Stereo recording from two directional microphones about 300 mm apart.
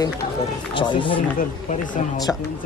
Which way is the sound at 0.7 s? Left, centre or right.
Centre.